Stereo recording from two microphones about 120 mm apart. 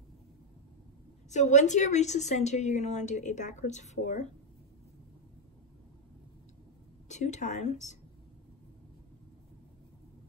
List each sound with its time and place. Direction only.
1.3 s a woman's voice: 80° left
7.1 s speech: 80° left